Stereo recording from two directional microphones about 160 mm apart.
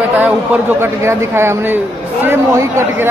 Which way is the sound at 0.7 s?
15° right (ahead or behind).